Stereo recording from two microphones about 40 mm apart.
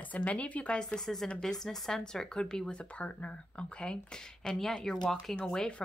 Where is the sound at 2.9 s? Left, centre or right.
Left; by 5.7 s centre.